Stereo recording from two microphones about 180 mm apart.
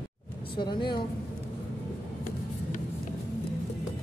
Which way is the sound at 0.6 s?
25° left (ahead or behind).